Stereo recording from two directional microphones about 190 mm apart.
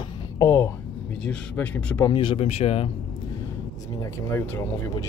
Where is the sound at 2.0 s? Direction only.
25° left (ahead or behind).